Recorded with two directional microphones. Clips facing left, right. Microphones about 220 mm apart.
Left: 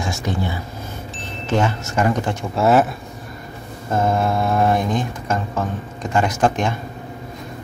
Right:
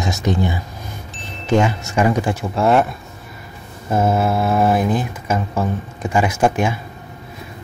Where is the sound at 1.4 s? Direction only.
10° right (ahead or behind).